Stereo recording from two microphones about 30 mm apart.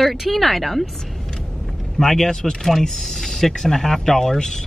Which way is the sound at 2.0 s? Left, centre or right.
Centre.